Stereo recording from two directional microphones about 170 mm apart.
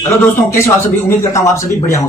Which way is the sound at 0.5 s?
15° left (ahead or behind).